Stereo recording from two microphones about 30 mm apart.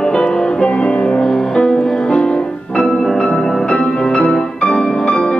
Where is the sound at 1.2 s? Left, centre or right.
Centre.